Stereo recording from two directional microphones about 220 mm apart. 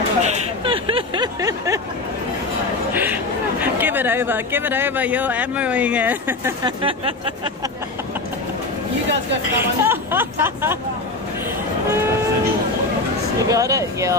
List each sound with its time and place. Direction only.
0.2 s vehicle: 25° right (ahead or behind)
2.9 s a sound: 10° right (ahead or behind)
3.6 s speech: 10° right (ahead or behind)
6.6 s speech: 25° right (ahead or behind)
9.6 s speech: 10° right (ahead or behind)
13.5 s speech: 15° right (ahead or behind)